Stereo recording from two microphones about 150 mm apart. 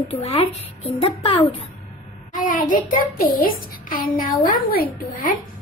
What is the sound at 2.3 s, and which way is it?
A child's voice, 65° left (ahead or behind).